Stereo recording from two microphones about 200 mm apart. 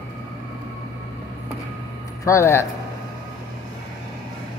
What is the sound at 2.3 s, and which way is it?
Speech, 15° left (ahead or behind).